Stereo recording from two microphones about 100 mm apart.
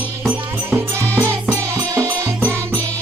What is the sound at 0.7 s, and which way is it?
Music, 25° right (ahead or behind).